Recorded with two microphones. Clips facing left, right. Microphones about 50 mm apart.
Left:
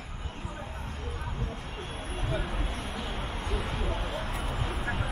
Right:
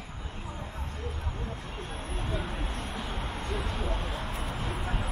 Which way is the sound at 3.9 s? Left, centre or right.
Centre.